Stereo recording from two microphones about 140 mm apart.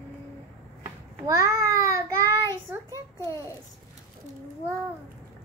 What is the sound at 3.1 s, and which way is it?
Speech, 20° left (ahead or behind).